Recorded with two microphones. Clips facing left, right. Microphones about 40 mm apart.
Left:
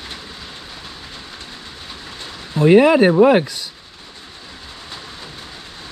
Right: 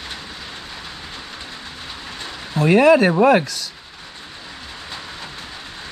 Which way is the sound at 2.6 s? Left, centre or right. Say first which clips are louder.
Left 2 dB; centre.